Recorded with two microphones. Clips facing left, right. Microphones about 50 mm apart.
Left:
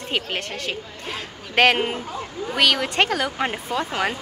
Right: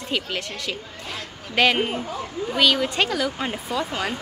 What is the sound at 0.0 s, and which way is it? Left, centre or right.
A woman's voice, left.